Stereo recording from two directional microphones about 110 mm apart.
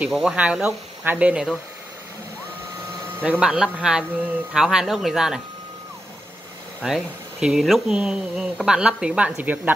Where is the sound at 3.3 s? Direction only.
5° right (ahead or behind).